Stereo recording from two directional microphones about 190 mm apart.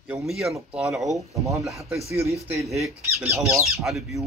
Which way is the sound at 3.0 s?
15° right (ahead or behind).